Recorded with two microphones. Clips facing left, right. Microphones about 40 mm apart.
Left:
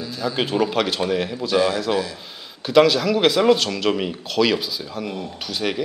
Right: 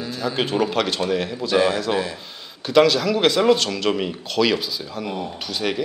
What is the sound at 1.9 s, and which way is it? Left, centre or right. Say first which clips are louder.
Speech: even; centre.